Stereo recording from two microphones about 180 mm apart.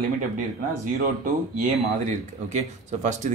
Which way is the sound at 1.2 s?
45° right (ahead or behind).